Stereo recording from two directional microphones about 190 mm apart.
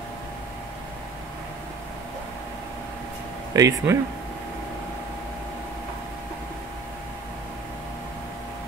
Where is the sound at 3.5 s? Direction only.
15° right (ahead or behind).